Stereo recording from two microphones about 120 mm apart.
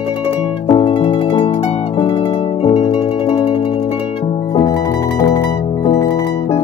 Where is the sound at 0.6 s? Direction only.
45° left (ahead or behind).